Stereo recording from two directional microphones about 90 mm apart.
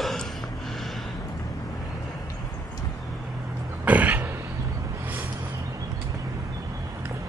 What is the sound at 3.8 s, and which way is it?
Cough, 15° right (ahead or behind).